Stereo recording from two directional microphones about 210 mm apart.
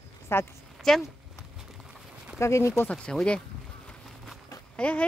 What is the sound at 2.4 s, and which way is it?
Speech, 15° left (ahead or behind).